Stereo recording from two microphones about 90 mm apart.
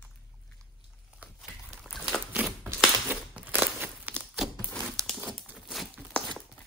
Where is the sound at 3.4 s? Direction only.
20° right (ahead or behind).